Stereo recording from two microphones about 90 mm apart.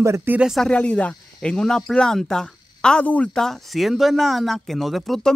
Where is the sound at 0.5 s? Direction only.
10° left (ahead or behind).